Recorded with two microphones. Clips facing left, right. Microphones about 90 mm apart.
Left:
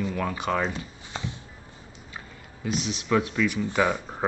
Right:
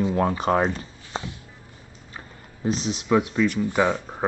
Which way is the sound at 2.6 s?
30° right (ahead or behind).